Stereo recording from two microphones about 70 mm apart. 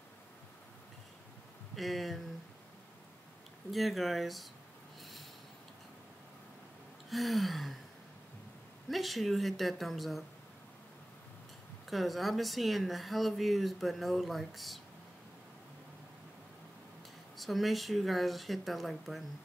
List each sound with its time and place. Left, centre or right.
1.8 s speech: centre
3.7 s speech: centre
7.1 s speech: centre
8.8 s speech: centre
11.9 s speech: centre
17.4 s speech: centre